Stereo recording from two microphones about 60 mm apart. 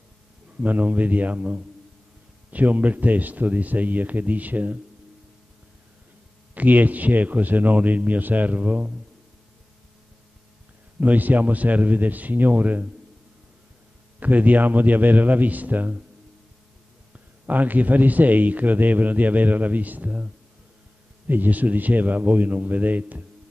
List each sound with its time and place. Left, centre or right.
0.6 s a man's voice: right
6.5 s a man's voice: right
11.0 s a man's voice: right
14.2 s a man's voice: right
17.5 s a man's voice: right
21.3 s a man's voice: right